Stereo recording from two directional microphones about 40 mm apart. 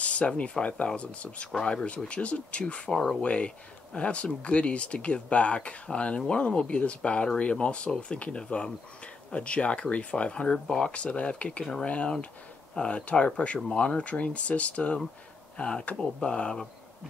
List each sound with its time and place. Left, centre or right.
0.0 s a sound: left
0.4 s speech: left
2.9 s speech: centre
3.3 s speech: left